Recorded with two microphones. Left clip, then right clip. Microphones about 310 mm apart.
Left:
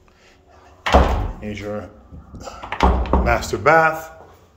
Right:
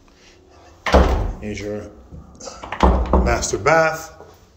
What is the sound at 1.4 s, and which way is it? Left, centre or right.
Speech, centre.